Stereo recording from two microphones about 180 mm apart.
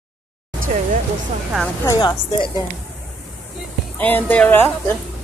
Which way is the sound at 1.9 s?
20° left (ahead or behind).